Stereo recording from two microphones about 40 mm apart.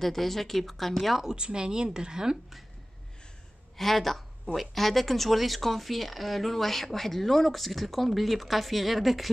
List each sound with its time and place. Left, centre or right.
0.0 s speech: centre
1.3 s speech: right
3.7 s speech: centre